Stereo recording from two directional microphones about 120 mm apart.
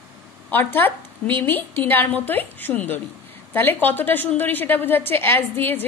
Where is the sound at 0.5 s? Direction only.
15° left (ahead or behind).